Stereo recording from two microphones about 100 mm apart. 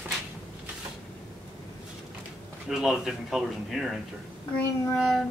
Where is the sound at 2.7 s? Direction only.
5° right (ahead or behind).